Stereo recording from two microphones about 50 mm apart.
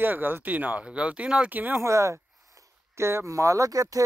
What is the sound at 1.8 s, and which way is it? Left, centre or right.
Speech, right.